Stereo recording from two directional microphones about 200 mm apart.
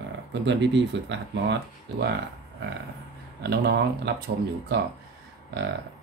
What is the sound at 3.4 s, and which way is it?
Speech, 55° right (ahead or behind).